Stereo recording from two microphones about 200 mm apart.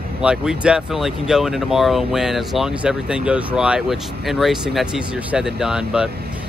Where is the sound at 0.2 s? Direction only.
5° right (ahead or behind).